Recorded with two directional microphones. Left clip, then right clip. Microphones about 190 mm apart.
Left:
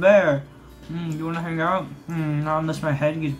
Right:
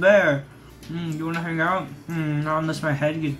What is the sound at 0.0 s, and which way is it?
Speech, 15° left (ahead or behind).